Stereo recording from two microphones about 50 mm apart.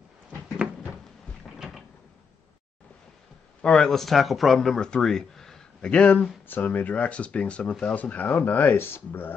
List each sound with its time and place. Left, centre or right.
1.6 s a sound: centre
3.6 s speech: centre
4.6 s speech: centre
5.8 s speech: left
6.4 s speech: left